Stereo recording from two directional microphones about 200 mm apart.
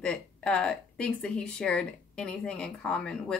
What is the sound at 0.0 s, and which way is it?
Speech, 5° left (ahead or behind).